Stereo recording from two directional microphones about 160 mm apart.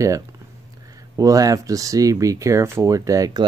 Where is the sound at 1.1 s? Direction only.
20° right (ahead or behind).